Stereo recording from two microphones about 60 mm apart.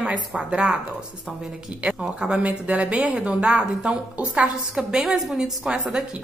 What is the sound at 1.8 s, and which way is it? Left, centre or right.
A woman's voice, centre.